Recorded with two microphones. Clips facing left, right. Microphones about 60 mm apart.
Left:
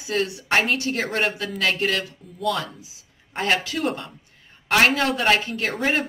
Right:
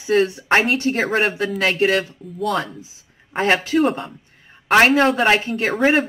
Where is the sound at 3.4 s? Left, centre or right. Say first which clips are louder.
Right 6 dB; right.